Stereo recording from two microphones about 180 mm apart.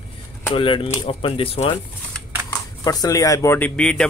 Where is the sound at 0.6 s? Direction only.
30° left (ahead or behind).